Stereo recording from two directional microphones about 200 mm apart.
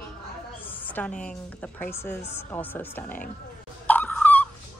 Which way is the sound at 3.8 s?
10° left (ahead or behind).